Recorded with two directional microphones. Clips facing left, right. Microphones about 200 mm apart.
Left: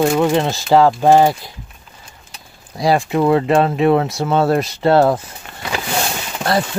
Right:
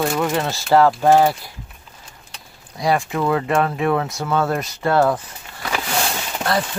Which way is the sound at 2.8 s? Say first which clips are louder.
Left 5 dB; 30° left (ahead or behind).